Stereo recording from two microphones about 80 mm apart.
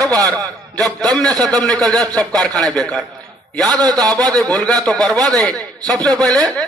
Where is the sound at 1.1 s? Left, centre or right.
Right.